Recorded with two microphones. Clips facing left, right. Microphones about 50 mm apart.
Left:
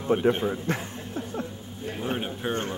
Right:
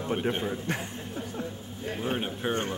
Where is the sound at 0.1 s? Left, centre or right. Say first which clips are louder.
Left 7 dB; centre.